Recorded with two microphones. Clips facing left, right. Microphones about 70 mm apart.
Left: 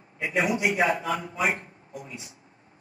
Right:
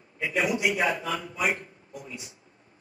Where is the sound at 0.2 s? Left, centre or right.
Left.